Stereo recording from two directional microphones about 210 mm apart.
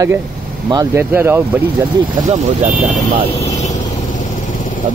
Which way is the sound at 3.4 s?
35° left (ahead or behind).